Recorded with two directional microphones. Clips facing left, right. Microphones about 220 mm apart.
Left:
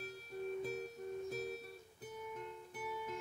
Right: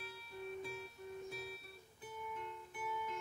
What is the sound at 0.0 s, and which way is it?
Music, 40° left (ahead or behind).